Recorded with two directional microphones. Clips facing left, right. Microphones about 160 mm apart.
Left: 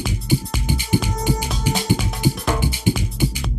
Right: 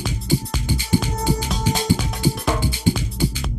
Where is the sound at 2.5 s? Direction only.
15° left (ahead or behind).